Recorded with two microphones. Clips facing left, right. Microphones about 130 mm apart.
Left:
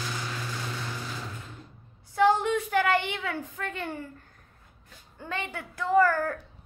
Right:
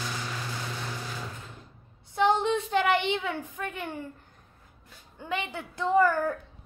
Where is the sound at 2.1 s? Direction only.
20° right (ahead or behind).